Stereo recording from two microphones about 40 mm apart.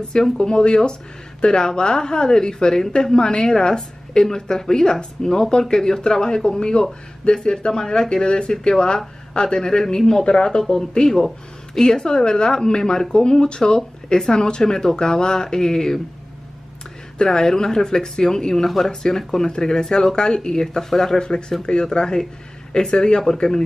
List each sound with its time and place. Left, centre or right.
0.2 s a woman's voice: centre
11.2 s speech: centre
11.9 s a woman's voice: centre
17.2 s a woman's voice: centre
21.2 s speech: left